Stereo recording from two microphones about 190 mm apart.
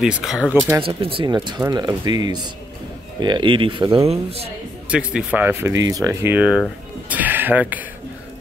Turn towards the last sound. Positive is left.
turn(degrees=-10)  # may be behind; listen again after turning